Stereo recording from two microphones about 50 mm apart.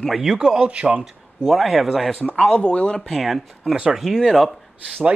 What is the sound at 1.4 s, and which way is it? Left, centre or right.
Speech, centre.